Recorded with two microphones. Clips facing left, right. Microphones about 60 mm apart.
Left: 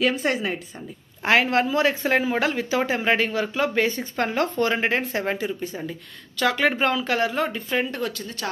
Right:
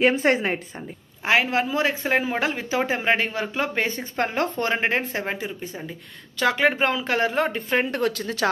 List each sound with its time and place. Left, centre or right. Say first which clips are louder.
0.0 s a woman's voice: right 3 dB; right
1.2 s speech: left 1 dB; centre; by 4.7 s right
4.7 s speech: even; centre; by 7.9 s right
7.9 s speech: right 5 dB; right